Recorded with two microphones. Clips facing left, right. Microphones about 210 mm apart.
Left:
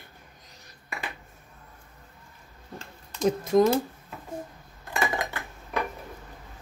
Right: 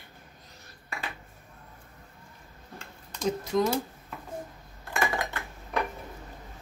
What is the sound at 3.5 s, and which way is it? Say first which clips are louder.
Speech: left 6 dB; 50° left (ahead or behind).